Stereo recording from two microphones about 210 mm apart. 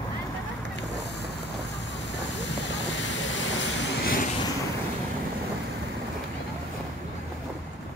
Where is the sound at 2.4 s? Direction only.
60° left (ahead or behind).